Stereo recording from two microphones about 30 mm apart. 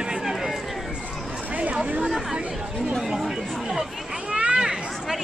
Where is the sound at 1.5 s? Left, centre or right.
Right.